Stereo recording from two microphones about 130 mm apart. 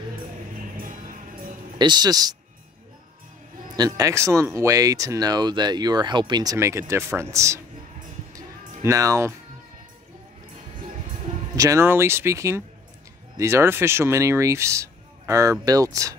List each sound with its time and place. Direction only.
1.8 s a man's voice: 35° right (ahead or behind)
3.7 s speech: 30° right (ahead or behind)
8.4 s music: 25° right (ahead or behind)
11.5 s speech: 25° right (ahead or behind)